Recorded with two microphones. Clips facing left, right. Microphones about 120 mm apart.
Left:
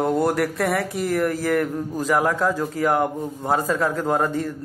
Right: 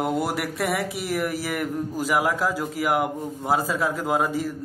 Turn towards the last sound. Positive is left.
turn(degrees=-5)  # may be behind; listen again after turning